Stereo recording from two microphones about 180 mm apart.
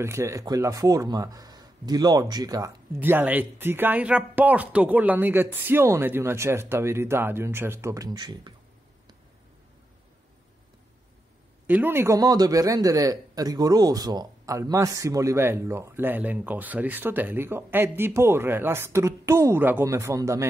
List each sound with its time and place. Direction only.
0.0 s speech: 15° right (ahead or behind)
3.0 s a man's voice: 10° right (ahead or behind)
11.6 s a man's voice: 10° right (ahead or behind)